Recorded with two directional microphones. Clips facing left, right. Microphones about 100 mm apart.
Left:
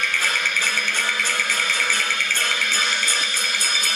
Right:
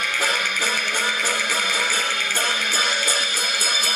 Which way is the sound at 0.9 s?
10° right (ahead or behind).